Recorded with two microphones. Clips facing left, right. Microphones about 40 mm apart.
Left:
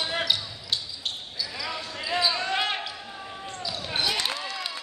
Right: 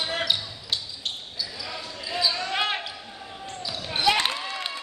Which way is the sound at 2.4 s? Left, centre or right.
Centre.